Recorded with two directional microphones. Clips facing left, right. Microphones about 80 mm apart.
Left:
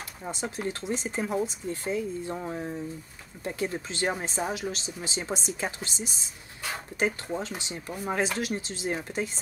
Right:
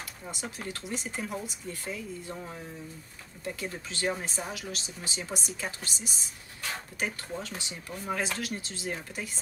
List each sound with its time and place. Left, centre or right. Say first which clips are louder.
0.2 s speech: left 8 dB; left